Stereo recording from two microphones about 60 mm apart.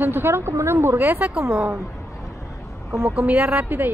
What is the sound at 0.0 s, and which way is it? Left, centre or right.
A woman's voice, right.